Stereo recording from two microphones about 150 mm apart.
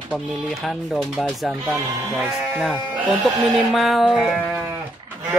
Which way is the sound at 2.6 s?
10° right (ahead or behind).